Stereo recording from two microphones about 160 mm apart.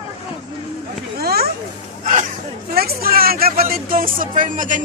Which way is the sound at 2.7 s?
70° right (ahead or behind).